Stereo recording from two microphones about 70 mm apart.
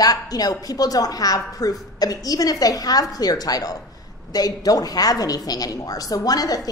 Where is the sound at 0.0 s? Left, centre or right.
Left.